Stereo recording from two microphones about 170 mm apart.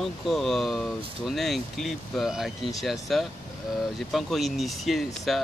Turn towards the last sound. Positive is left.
turn(degrees=0)  # may be behind; listen again after turning